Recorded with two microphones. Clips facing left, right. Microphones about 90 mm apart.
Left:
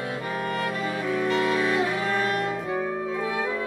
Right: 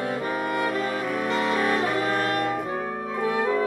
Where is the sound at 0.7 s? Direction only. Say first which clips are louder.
Right 1 dB; 50° right (ahead or behind).